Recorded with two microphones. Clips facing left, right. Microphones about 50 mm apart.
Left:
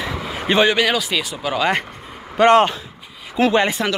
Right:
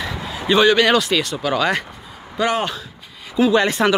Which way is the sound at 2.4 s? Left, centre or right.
Left.